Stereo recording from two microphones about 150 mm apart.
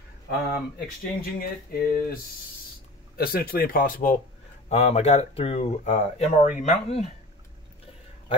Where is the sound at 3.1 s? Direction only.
85° left; by 4.1 s 60° left (ahead or behind).